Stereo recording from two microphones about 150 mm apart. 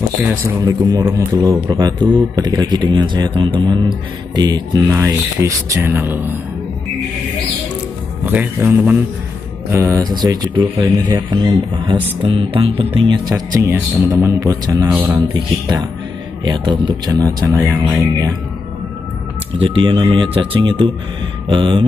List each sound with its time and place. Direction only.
0.6 s speech: 25° right (ahead or behind)
4.8 s speech: 20° right (ahead or behind)
8.3 s speech: 10° right (ahead or behind); by 13.4 s 30° right (ahead or behind)
13.6 s speech: 20° right (ahead or behind)
19.6 s speech: 35° right (ahead or behind)